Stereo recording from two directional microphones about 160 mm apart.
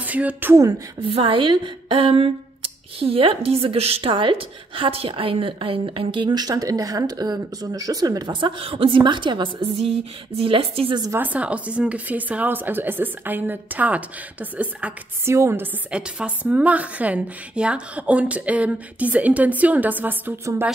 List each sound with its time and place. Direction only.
0.0 s a woman's voice: 10° right (ahead or behind)
1.0 s speech: 35° right (ahead or behind)
11.0 s a woman's voice: 15° right (ahead or behind)